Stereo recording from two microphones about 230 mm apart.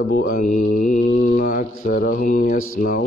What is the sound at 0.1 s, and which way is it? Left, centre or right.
Mantra, left.